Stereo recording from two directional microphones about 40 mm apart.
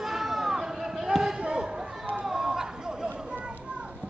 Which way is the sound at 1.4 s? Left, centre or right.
Right.